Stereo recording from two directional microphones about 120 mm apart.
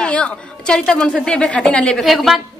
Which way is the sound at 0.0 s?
10° left (ahead or behind).